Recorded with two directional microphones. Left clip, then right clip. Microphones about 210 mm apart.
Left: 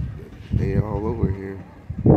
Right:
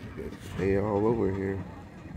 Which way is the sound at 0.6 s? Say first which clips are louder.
Right 1 dB; 10° right (ahead or behind).